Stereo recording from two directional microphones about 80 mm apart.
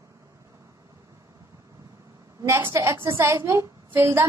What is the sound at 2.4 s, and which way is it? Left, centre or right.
A woman's voice, right.